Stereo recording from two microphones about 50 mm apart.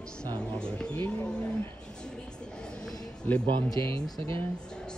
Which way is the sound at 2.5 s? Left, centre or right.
Centre.